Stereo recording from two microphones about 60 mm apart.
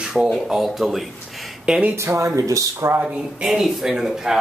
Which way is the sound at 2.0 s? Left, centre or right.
Right.